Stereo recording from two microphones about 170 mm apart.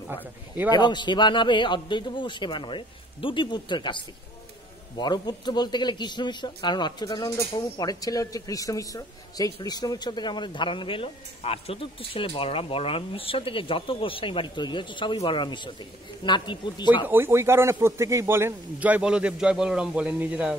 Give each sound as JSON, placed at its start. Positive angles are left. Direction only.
{"t": 0.7, "sound": "speech", "side_deg": 25}
{"t": 17.0, "sound": "a man's voice", "side_deg": -15}